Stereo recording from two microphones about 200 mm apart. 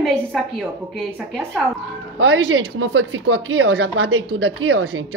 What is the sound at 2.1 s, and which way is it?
Speech, 75° right (ahead or behind).